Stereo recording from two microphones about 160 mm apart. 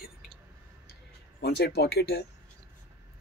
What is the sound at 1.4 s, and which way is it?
Speech, 90° left.